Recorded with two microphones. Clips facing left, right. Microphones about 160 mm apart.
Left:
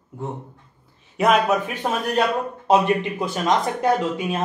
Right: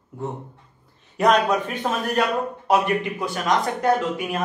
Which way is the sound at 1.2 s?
5° left (ahead or behind).